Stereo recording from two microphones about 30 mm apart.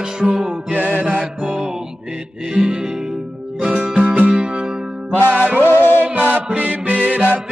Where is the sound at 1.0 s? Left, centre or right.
Right.